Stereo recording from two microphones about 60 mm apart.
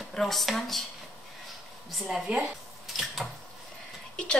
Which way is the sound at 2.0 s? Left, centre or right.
Centre.